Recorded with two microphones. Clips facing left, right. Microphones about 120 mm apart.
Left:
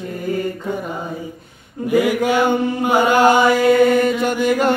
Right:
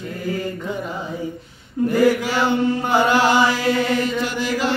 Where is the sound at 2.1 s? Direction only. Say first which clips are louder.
Left 4 dB; 50° left (ahead or behind).